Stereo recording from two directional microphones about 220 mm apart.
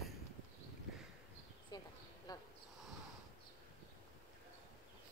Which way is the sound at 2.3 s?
20° left (ahead or behind).